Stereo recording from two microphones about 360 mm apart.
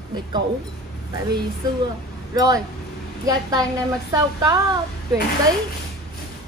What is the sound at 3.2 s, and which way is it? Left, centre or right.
A woman's voice, centre.